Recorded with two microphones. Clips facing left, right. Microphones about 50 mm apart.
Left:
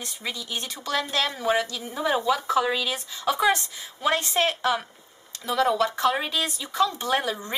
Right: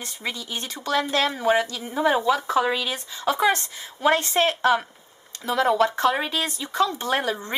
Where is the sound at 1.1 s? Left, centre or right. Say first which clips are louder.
Right 3 dB; centre.